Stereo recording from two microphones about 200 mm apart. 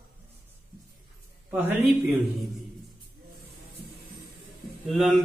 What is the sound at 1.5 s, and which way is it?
Speech, 10° right (ahead or behind).